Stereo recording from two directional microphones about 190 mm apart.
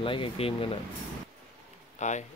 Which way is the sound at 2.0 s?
40° left (ahead or behind).